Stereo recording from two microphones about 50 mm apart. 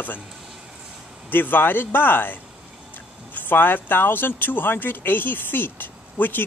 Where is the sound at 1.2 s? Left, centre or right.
Left.